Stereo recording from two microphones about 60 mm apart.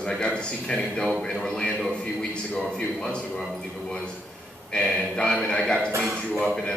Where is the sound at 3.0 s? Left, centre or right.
Centre.